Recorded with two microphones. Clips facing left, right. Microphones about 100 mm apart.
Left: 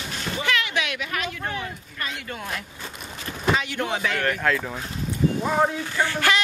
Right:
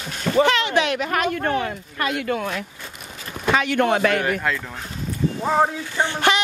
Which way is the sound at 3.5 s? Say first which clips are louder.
Right 7 dB; 60° right (ahead or behind).